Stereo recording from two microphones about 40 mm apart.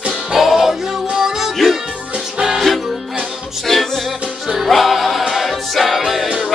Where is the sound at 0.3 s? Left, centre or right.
Centre.